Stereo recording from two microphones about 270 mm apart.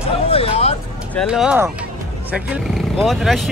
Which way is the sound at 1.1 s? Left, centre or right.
Centre.